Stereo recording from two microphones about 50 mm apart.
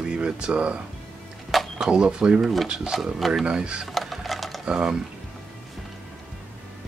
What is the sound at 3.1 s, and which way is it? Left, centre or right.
Speech, centre.